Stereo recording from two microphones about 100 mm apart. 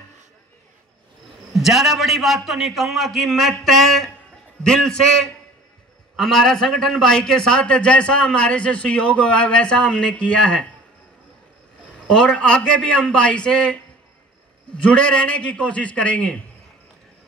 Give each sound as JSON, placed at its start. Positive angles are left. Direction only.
{"t": 1.5, "sound": "a man's voice", "side_deg": 0}
{"t": 12.1, "sound": "a man's voice", "side_deg": 10}